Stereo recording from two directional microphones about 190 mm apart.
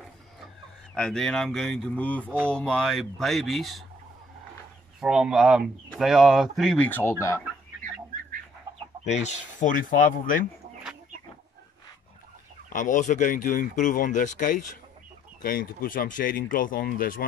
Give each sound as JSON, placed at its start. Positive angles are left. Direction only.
{"t": 0.9, "sound": "speech", "side_deg": 5}
{"t": 2.2, "sound": "speech", "side_deg": -10}
{"t": 2.5, "sound": "speech", "side_deg": 5}
{"t": 5.0, "sound": "speech", "side_deg": -5}
{"t": 8.7, "sound": "chicken", "side_deg": -20}
{"t": 9.0, "sound": "speech", "side_deg": 35}
{"t": 12.6, "sound": "speech", "side_deg": 45}